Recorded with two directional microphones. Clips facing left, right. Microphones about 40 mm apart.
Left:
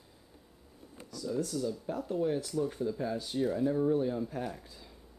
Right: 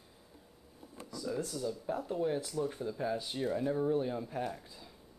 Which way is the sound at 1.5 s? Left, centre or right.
Centre.